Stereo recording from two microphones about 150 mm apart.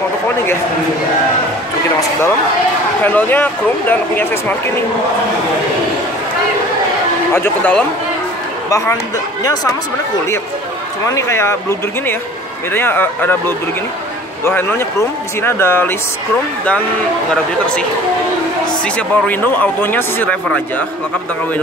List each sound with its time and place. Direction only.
3.0 s speech: 10° left (ahead or behind)
7.3 s speech: 15° left (ahead or behind)
11.1 s speech: 20° left (ahead or behind)
12.7 s speech: 15° left (ahead or behind)
17.3 s speech: 5° left (ahead or behind)
18.9 s speech: 10° left (ahead or behind)